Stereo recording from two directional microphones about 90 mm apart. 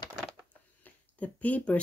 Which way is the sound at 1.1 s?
15° left (ahead or behind).